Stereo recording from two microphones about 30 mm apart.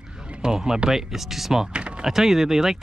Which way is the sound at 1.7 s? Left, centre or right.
Right.